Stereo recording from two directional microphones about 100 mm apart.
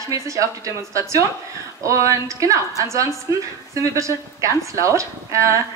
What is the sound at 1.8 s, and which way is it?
A woman's voice, 30° right (ahead or behind).